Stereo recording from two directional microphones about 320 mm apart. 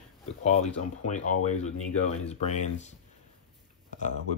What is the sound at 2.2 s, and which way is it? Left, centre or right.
Speech, centre.